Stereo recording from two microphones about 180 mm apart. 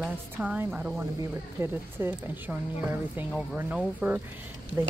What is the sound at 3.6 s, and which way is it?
Speech, 10° right (ahead or behind).